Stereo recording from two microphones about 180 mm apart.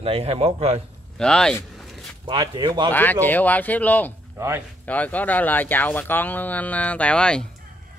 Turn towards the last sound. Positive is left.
turn(degrees=5)  # may be behind; listen again after turning